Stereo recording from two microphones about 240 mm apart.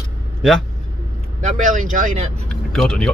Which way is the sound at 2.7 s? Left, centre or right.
Centre.